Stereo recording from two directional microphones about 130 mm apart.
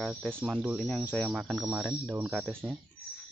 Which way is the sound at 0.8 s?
Centre (ahead or behind).